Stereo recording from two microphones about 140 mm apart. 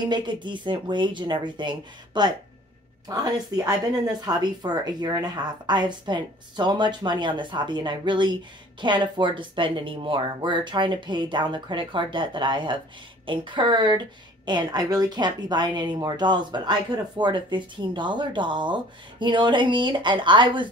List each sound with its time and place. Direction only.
0.1 s a woman's voice: 35° right (ahead or behind)